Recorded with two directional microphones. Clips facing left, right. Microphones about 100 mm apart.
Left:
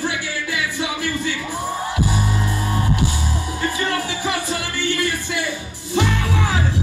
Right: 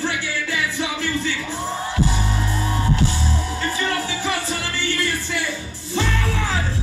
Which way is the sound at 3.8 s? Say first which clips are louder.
Left 1 dB; 15° left (ahead or behind).